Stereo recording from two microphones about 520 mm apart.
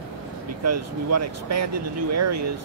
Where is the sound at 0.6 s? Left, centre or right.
Right.